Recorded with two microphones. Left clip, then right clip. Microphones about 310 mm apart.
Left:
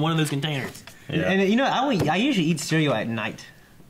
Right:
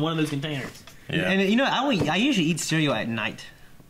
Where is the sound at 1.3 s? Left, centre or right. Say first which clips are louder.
Left 1 dB; left.